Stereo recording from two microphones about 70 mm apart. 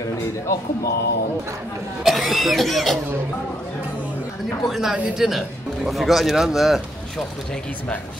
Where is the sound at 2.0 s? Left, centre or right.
Centre.